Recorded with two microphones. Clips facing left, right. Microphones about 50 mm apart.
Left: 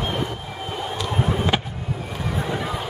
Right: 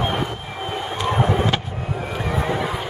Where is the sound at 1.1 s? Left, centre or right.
Right.